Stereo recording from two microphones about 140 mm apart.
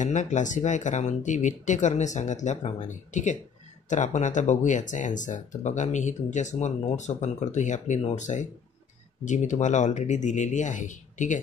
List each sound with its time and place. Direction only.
0.0 s speech: 60° left (ahead or behind)